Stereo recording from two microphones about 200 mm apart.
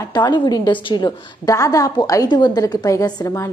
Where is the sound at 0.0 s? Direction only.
20° left (ahead or behind).